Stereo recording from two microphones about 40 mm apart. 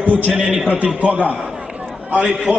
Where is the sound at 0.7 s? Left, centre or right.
Right.